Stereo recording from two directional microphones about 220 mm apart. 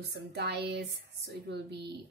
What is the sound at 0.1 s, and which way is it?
A woman's voice, 50° right (ahead or behind).